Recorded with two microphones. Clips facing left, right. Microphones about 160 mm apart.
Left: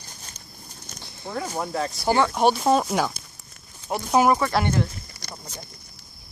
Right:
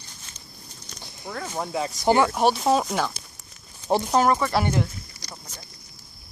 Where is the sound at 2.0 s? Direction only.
20° right (ahead or behind).